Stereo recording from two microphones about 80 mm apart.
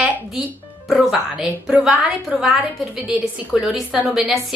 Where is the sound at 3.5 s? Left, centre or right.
Centre.